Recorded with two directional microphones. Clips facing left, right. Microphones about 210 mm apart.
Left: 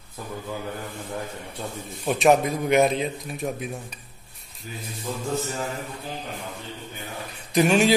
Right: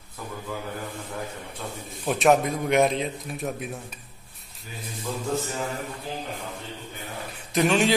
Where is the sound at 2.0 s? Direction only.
Centre (ahead or behind).